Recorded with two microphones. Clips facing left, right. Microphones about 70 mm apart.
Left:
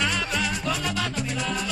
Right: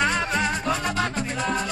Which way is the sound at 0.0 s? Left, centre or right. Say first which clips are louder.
Right 4 dB; right.